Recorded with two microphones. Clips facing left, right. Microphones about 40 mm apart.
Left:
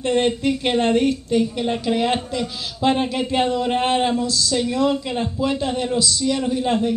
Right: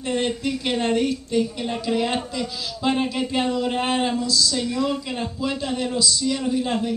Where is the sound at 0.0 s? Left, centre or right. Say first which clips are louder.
Left 5 dB; left.